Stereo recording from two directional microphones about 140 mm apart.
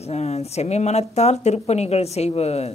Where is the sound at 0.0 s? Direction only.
50° left (ahead or behind).